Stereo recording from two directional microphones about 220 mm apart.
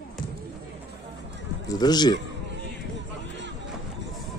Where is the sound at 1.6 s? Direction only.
20° left (ahead or behind).